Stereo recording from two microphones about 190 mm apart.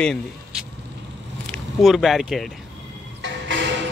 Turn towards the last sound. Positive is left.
turn(degrees=-70)  # may be behind; listen again after turning